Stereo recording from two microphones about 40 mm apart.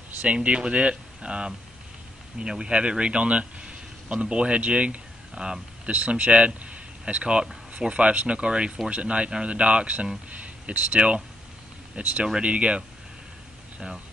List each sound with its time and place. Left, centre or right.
0.2 s speech: right
5.9 s speech: right